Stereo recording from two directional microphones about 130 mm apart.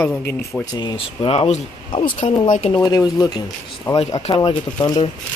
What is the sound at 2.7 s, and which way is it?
Speech, 35° left (ahead or behind).